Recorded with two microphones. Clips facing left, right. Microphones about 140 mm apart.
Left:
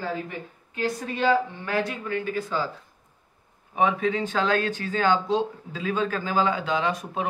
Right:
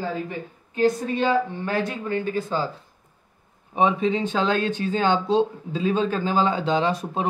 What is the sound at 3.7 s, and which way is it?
Speech, 25° right (ahead or behind).